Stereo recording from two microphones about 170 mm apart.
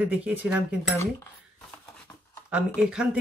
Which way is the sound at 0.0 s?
10° right (ahead or behind).